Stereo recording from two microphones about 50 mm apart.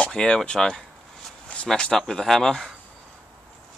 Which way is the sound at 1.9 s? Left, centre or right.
Centre.